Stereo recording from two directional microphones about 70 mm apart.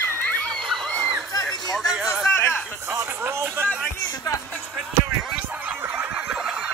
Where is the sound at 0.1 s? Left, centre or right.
Left.